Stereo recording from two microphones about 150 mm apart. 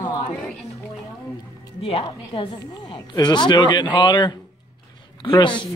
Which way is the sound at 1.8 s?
40° left (ahead or behind).